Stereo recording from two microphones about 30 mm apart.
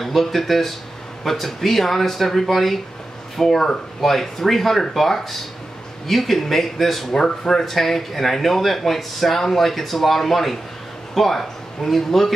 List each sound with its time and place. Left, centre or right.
0.0 s speech: centre
7.2 s speech: centre
7.7 s a man's voice: centre